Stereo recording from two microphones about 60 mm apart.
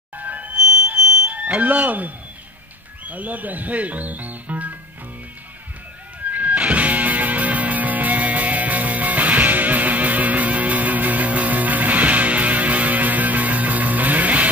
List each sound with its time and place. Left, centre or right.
0.2 s music: right
1.3 s speech: right
6.3 s music: right